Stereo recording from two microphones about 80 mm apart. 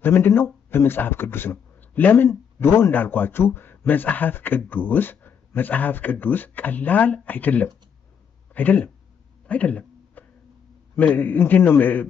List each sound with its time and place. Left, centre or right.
0.0 s a man's voice: left
9.5 s a sound: centre
11.0 s a man's voice: left